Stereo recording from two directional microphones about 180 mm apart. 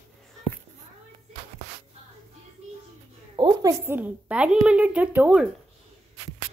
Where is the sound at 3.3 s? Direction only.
25° right (ahead or behind).